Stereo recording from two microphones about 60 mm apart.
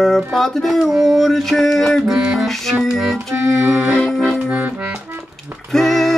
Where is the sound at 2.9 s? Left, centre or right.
Centre.